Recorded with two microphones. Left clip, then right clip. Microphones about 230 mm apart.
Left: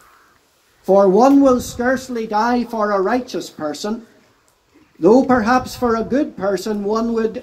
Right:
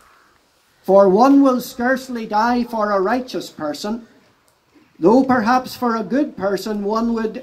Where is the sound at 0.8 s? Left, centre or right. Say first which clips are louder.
Even; right.